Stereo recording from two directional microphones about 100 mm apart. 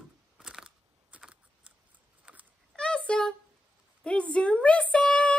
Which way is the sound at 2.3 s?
10° right (ahead or behind).